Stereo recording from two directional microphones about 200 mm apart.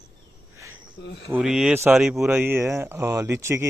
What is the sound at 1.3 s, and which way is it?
Speech, 5° right (ahead or behind).